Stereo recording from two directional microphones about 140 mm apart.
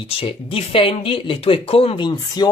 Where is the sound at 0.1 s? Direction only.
40° left (ahead or behind).